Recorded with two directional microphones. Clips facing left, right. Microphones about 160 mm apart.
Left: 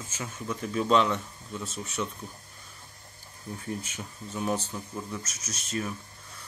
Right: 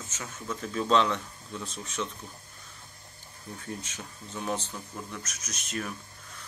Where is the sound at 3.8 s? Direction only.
10° left (ahead or behind).